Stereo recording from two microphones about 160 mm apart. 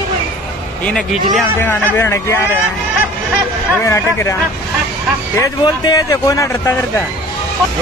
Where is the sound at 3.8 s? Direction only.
15° left (ahead or behind).